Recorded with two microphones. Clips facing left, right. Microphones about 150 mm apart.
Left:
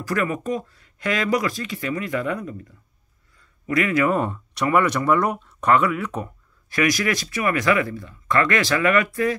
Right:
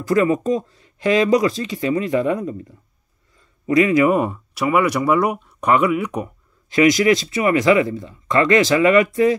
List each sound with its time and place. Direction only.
0.0 s speech: 20° right (ahead or behind)